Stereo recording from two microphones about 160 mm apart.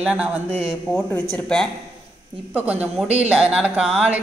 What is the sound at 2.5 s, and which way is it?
A woman's voice, 10° right (ahead or behind).